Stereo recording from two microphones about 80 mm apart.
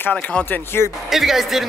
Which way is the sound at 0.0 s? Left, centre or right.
Centre.